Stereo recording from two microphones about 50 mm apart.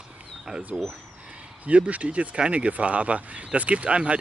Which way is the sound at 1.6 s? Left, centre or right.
Right.